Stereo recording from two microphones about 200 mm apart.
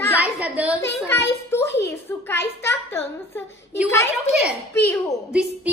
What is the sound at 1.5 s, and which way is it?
A child's voice, 10° left (ahead or behind).